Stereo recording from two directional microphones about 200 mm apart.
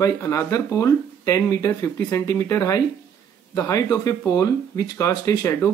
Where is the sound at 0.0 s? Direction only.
15° left (ahead or behind).